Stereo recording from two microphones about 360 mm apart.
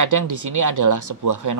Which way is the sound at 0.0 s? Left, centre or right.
Right.